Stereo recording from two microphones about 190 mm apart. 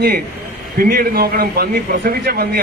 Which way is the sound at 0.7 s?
50° right (ahead or behind).